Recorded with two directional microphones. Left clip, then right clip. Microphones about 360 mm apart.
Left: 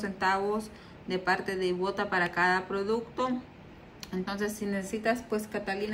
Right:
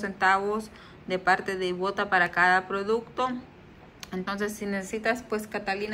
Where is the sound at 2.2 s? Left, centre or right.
Centre.